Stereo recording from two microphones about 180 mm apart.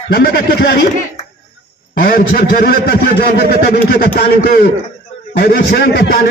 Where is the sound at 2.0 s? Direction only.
55° left (ahead or behind).